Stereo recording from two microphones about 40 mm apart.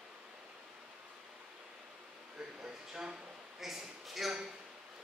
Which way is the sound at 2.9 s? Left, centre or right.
Centre.